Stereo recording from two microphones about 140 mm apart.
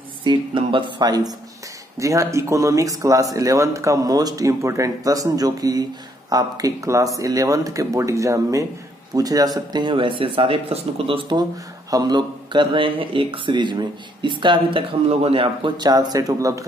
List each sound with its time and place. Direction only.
0.2 s speech: 35° right (ahead or behind)